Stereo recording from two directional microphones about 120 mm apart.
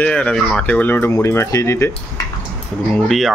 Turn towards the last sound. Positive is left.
turn(degrees=0)  # may be behind; listen again after turning